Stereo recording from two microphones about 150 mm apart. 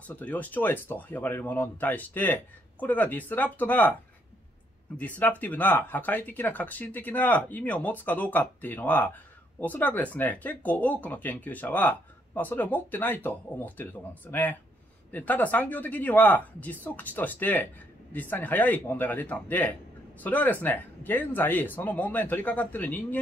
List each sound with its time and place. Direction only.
0.0 s speech: 10° left (ahead or behind)
4.9 s speech: 10° left (ahead or behind)